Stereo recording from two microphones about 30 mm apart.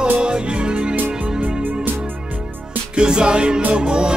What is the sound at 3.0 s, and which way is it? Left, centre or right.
Music, right.